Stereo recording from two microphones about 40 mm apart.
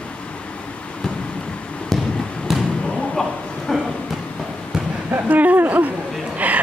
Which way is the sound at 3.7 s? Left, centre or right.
Centre.